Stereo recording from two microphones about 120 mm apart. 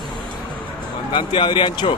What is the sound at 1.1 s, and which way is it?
Speech, 40° left (ahead or behind).